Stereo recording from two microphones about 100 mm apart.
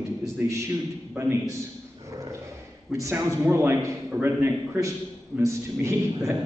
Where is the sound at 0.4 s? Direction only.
20° right (ahead or behind).